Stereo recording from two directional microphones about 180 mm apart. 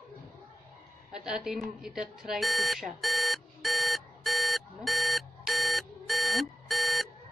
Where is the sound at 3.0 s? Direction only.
Centre (ahead or behind).